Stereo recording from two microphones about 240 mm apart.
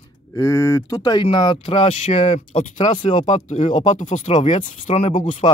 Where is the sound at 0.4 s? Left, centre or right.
Centre.